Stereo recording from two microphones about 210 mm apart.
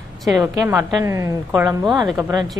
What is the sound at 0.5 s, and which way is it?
A woman's voice, 10° right (ahead or behind).